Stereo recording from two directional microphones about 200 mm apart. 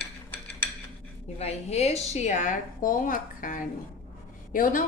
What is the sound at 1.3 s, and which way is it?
A woman's voice, 30° left (ahead or behind).